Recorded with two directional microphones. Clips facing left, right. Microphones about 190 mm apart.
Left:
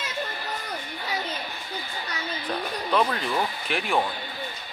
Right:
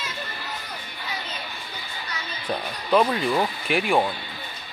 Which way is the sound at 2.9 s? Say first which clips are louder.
Right 5 dB; 10° right (ahead or behind).